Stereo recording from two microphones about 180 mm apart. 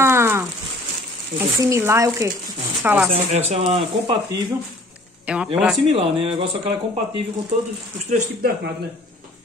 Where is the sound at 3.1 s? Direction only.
35° right (ahead or behind).